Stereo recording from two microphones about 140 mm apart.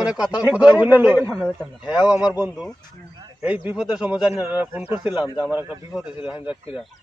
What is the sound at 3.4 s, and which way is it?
Speech, 10° right (ahead or behind).